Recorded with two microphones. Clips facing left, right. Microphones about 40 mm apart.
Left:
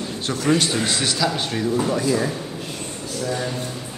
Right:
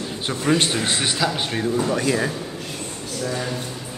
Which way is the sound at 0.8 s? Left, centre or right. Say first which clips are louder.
Even; right.